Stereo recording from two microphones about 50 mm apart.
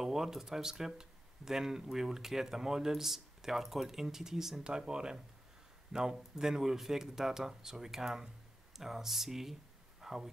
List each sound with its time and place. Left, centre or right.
0.0 s speech: centre